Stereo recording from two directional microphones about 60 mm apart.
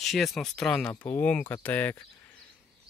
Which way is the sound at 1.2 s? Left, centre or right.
Left.